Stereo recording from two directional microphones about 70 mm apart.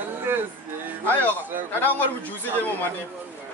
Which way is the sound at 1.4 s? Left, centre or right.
Right.